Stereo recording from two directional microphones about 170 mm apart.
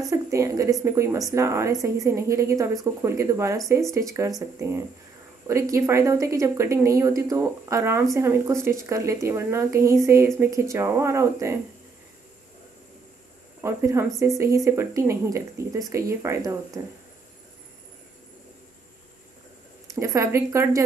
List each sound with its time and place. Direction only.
0.1 s speech: 20° right (ahead or behind)
13.6 s speech: 15° right (ahead or behind)
19.9 s speech: 15° right (ahead or behind)